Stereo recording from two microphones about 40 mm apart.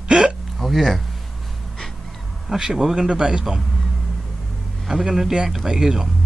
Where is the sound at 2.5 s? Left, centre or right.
Centre.